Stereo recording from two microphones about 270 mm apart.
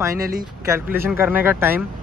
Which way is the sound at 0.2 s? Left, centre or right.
Right.